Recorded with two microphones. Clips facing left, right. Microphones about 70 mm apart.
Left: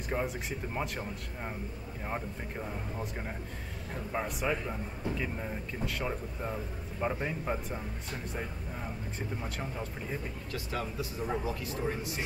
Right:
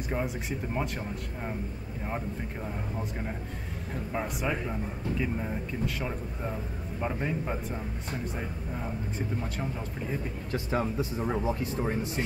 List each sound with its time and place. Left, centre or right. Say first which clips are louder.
0.1 s a man's voice: right 1 dB; centre
9.4 s a man's voice: right 3 dB; centre
10.5 s speech: right 7 dB; right